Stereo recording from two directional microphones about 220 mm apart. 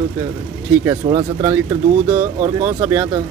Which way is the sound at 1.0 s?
30° right (ahead or behind).